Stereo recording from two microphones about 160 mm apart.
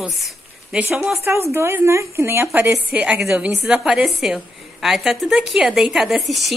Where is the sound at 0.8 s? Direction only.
10° right (ahead or behind).